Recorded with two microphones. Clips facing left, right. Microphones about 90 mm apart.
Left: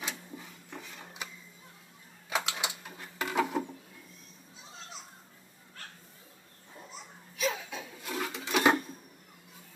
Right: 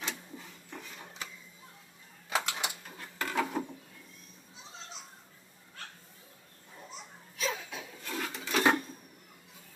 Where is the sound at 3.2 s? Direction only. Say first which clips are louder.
Left 2 dB; 15° left (ahead or behind).